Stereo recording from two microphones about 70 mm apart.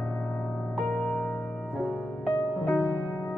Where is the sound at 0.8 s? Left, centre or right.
Left.